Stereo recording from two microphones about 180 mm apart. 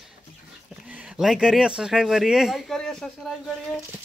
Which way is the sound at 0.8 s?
5° right (ahead or behind).